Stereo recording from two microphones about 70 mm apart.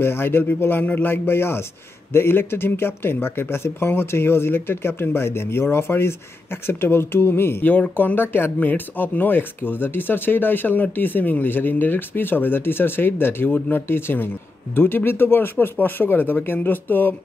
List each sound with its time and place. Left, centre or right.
0.0 s speech: left